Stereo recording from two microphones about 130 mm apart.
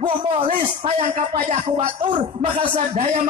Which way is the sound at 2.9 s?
55° right (ahead or behind).